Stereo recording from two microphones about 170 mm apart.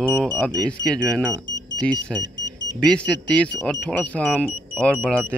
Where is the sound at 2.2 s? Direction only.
90° left.